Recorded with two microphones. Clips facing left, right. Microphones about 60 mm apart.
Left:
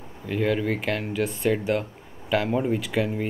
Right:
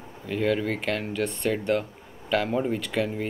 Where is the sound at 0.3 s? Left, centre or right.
Centre.